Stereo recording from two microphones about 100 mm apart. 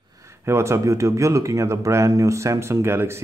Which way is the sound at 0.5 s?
25° right (ahead or behind).